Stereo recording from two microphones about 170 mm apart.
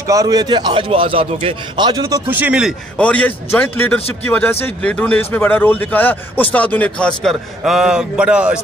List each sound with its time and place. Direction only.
0.0 s a man's voice: 20° right (ahead or behind)
3.0 s a man's voice: 10° left (ahead or behind)